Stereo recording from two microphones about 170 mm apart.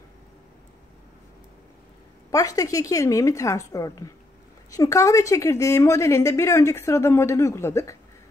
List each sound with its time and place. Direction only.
2.3 s a woman's voice: 20° left (ahead or behind)